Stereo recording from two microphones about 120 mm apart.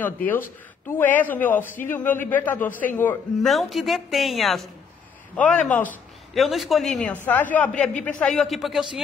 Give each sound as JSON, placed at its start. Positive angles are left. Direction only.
{"t": 0.0, "sound": "a man's voice", "side_deg": 15}
{"t": 3.4, "sound": "a woman's voice", "side_deg": 0}
{"t": 5.3, "sound": "a man's voice", "side_deg": 10}
{"t": 6.3, "sound": "a woman's voice", "side_deg": 0}
{"t": 7.2, "sound": "a man's voice", "side_deg": 15}